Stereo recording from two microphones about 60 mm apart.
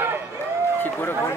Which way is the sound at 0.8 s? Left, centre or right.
Left.